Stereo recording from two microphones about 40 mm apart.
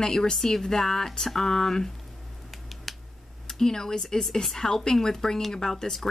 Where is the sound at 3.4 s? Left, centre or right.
Centre.